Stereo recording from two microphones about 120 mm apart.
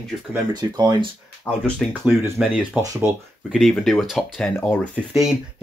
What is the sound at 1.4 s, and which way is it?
Speech, 5° left (ahead or behind).